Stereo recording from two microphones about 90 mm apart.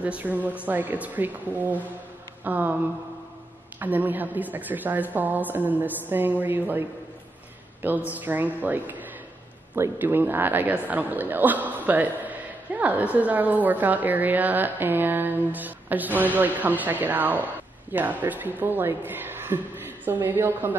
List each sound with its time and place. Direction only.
0.0 s a woman's voice: 20° right (ahead or behind)
3.8 s a man's voice: 20° right (ahead or behind)